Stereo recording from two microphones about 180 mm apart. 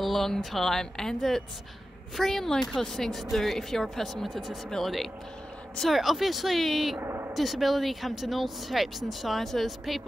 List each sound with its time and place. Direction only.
0.0 s speech: centre (ahead or behind)
7.0 s a sound: 15° right (ahead or behind)
7.3 s speech: centre (ahead or behind)